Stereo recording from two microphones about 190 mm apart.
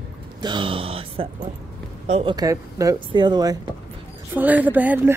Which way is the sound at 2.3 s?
20° right (ahead or behind).